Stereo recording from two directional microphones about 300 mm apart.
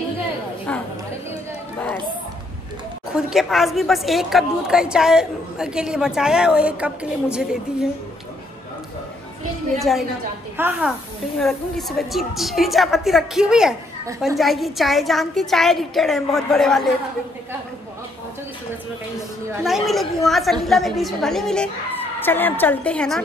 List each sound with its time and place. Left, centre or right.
3.1 s a woman's voice: centre
9.8 s a woman's voice: centre
19.5 s a woman's voice: centre